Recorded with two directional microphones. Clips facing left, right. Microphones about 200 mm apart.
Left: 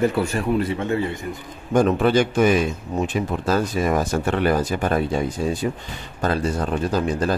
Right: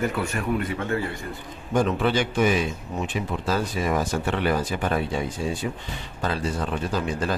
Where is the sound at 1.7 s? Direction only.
45° left (ahead or behind).